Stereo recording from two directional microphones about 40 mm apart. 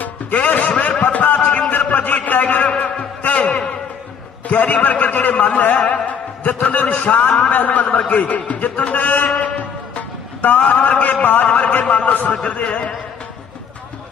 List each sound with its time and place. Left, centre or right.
0.0 s music: left
1.7 s a sound: left
3.2 s music: left
4.5 s a man's voice: left
10.6 s a man's voice: left
11.4 s a man's voice: left